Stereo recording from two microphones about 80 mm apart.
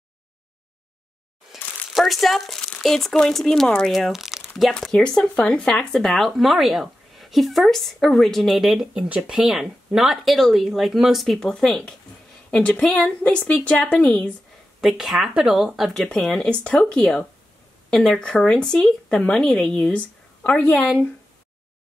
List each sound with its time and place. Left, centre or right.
1.5 s speech: centre
3.9 s speech: centre
14.8 s speech: centre
20.4 s speech: centre